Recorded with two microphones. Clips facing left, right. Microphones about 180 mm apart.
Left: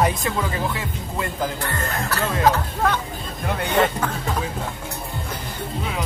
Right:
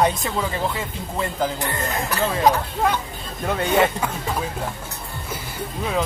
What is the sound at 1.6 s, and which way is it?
Speech, 15° right (ahead or behind).